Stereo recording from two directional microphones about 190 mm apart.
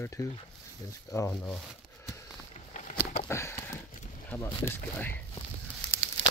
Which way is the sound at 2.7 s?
40° left (ahead or behind).